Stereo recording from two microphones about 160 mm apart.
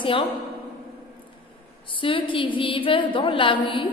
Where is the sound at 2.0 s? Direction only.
30° left (ahead or behind).